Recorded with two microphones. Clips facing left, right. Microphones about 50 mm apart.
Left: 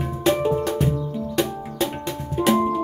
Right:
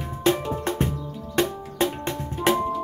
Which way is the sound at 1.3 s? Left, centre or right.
Right.